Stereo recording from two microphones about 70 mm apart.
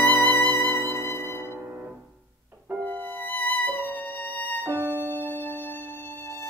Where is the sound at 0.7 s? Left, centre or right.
Left.